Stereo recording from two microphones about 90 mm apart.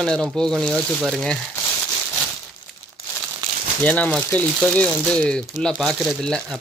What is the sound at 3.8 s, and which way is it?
Speech, 15° left (ahead or behind).